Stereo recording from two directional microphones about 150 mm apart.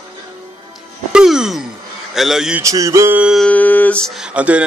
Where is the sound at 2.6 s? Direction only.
20° right (ahead or behind).